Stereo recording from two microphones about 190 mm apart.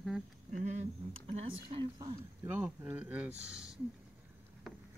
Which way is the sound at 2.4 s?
10° right (ahead or behind).